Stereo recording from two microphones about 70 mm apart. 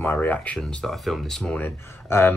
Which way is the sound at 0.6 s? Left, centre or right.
Centre.